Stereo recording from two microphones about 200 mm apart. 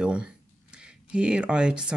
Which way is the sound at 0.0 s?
5° right (ahead or behind).